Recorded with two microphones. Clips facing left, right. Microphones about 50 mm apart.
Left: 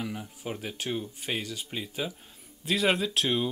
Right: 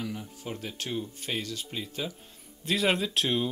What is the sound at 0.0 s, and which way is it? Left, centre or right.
Speech, centre.